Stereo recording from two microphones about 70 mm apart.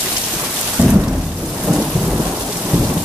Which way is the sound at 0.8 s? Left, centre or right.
Right.